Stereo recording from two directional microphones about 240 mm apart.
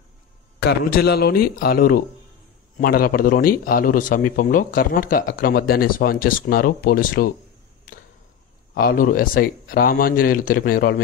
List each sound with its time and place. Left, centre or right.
0.9 s a man's voice: left
8.7 s a man's voice: left